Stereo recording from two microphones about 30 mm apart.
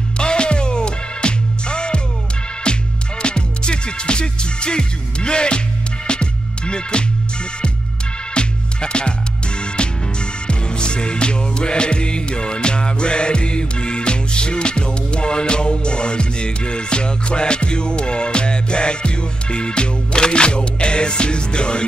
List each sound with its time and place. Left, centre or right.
0.2 s music: left
8.4 s music: left